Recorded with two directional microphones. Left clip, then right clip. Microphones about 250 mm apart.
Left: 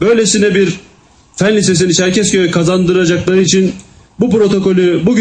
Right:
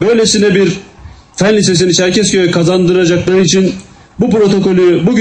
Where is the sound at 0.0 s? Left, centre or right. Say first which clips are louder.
Right 1 dB; left.